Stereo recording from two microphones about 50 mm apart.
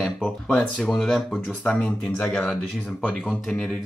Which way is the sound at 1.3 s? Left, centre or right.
Left.